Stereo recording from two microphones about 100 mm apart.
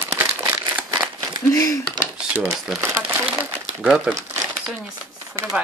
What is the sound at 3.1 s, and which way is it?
Speech, 25° right (ahead or behind).